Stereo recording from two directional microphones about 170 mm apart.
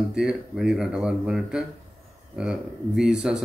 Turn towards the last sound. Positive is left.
turn(degrees=-5)  # may be behind; listen again after turning